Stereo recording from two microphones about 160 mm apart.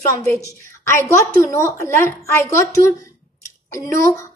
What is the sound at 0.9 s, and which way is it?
A woman's voice, 15° left (ahead or behind).